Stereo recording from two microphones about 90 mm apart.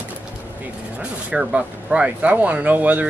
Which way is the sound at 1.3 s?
10° right (ahead or behind).